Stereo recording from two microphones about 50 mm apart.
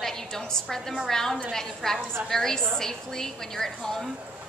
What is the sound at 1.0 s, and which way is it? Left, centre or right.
A woman's voice, centre.